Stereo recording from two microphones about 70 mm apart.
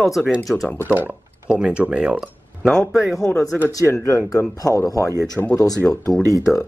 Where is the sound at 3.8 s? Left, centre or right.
Left.